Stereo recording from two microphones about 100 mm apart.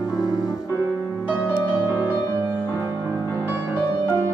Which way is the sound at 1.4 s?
20° right (ahead or behind).